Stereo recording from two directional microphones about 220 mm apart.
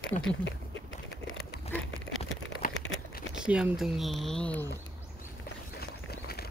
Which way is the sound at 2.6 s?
40° left (ahead or behind).